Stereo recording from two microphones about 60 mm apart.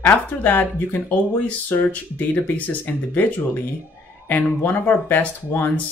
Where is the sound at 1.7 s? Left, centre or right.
Left.